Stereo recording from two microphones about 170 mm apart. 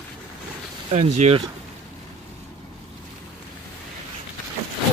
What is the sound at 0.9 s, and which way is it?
Speech, 40° right (ahead or behind).